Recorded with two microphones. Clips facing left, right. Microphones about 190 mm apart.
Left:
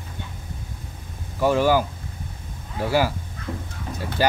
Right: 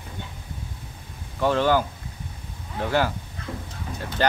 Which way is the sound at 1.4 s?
10° left (ahead or behind).